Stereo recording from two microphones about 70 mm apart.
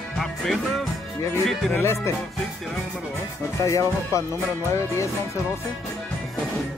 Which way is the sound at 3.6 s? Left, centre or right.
Left.